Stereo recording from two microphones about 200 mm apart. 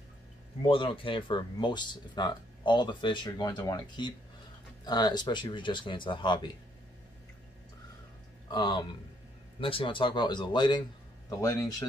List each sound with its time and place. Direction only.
0.6 s speech: 25° left (ahead or behind)
8.5 s speech: 25° left (ahead or behind)